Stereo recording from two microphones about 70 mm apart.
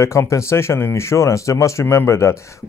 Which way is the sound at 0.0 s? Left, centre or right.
Left.